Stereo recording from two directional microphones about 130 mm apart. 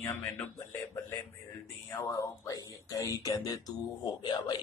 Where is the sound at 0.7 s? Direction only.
20° left (ahead or behind).